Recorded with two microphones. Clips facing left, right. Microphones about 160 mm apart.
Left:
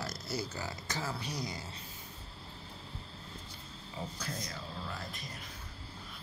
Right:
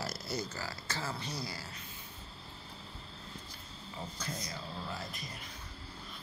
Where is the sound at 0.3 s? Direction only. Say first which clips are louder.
Left 3 dB; 10° left (ahead or behind).